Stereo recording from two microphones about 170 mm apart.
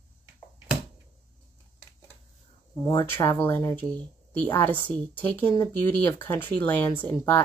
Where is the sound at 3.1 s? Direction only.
15° left (ahead or behind).